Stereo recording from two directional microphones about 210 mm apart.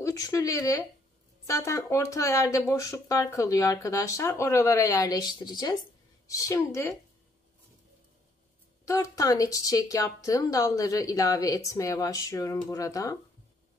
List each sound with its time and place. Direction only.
0.0 s a woman's voice: 15° left (ahead or behind)
8.8 s a woman's voice: 15° left (ahead or behind)